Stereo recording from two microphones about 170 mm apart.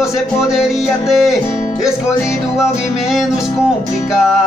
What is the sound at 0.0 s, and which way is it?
Speech, centre (ahead or behind).